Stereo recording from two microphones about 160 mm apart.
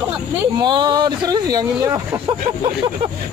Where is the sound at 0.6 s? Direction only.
30° right (ahead or behind).